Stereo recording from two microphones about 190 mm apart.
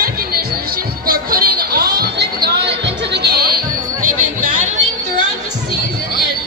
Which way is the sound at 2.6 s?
30° right (ahead or behind).